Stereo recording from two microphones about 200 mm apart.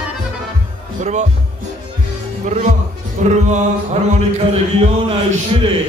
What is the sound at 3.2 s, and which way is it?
Speech, 40° right (ahead or behind).